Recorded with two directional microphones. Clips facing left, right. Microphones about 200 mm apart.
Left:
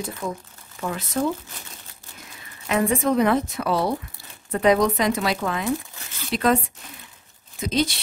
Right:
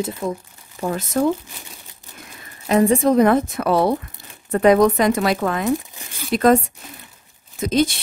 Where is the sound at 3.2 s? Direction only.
50° right (ahead or behind).